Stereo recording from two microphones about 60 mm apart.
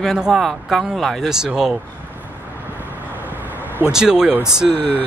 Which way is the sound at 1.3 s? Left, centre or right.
Centre.